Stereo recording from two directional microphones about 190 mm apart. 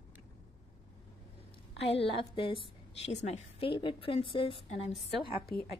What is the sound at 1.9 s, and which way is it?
A woman's voice, 30° left (ahead or behind).